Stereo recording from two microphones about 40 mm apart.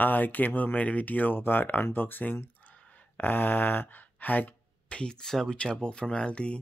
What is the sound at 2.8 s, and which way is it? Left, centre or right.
Speech, left.